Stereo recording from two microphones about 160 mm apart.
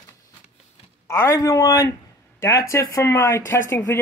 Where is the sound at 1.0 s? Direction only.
15° left (ahead or behind).